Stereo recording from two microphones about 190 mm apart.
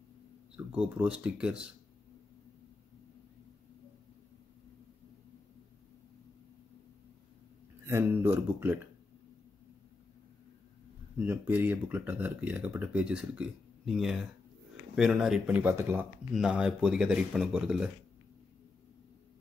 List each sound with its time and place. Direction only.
0.7 s speech: 5° right (ahead or behind)
7.8 s speech: 10° right (ahead or behind)
11.1 s speech: 10° right (ahead or behind)